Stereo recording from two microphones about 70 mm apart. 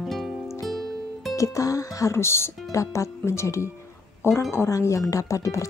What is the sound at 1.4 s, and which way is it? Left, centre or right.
Speech, left.